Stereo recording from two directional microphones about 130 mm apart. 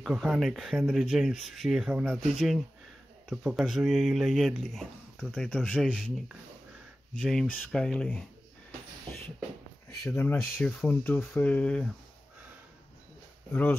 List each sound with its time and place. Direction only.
0.0 s speech: centre (ahead or behind)
7.2 s speech: 5° left (ahead or behind)
10.0 s speech: 20° left (ahead or behind)
13.5 s speech: 15° left (ahead or behind)